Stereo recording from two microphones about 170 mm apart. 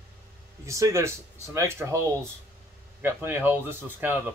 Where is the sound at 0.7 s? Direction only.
15° right (ahead or behind).